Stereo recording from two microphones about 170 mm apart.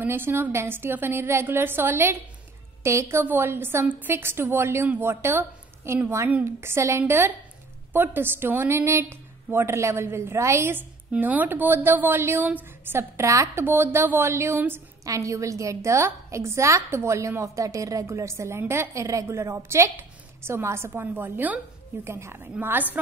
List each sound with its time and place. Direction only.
0.0 s a woman's voice: 15° right (ahead or behind)